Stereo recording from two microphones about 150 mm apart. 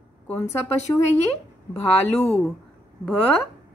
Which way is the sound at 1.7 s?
5° left (ahead or behind).